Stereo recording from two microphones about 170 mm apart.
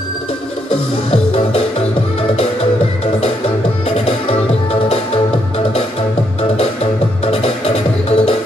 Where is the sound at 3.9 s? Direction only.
35° left (ahead or behind).